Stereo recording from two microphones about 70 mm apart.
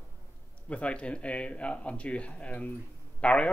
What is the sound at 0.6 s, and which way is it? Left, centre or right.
Speech, centre.